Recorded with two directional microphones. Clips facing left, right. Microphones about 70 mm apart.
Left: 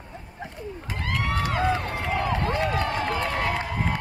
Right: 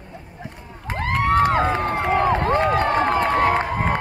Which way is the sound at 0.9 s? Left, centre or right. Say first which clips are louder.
Right 9 dB; right.